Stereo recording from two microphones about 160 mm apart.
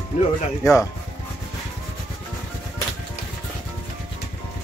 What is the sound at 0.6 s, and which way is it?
Speech, 20° left (ahead or behind).